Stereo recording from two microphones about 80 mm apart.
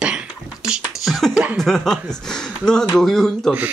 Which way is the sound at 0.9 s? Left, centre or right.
Centre.